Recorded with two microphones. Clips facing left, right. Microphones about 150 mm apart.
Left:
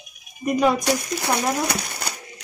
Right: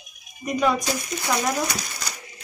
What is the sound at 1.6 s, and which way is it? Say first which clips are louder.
Speech: left 3 dB; 60° left (ahead or behind).